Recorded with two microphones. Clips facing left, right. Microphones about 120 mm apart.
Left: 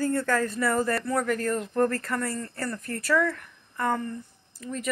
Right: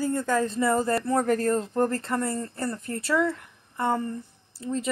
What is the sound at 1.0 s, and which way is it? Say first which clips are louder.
Speech: right 3 dB; 35° right (ahead or behind).